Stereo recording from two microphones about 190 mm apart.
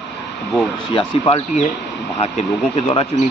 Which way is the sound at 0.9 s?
30° left (ahead or behind).